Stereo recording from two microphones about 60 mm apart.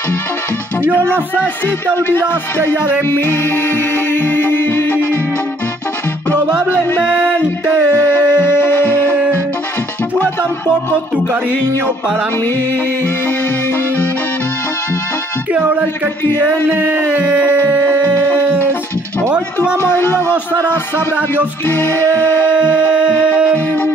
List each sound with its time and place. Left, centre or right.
1.1 s speech: right
2.0 s music: left
6.7 s music: left
8.1 s music: left
15.5 s speech: right
16.6 s a sound: right
19.3 s speech: centre
19.8 s music: left
22.6 s a sound: centre